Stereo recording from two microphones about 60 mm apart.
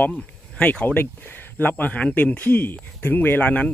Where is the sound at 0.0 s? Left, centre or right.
Left.